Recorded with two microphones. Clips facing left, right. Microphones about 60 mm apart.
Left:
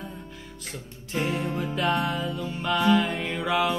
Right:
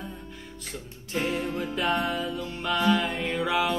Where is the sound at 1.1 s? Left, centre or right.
Centre.